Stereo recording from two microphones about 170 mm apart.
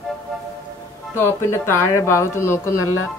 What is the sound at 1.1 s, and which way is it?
Speech, 15° left (ahead or behind).